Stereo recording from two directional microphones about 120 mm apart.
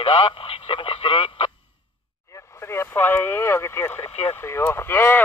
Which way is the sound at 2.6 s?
20° left (ahead or behind).